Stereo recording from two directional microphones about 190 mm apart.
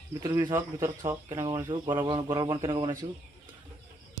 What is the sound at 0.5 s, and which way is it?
Speech, 10° right (ahead or behind).